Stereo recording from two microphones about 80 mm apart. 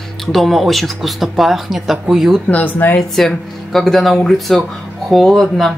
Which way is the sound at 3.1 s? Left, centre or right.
Centre.